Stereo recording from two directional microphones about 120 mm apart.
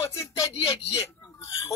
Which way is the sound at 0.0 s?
25° left (ahead or behind).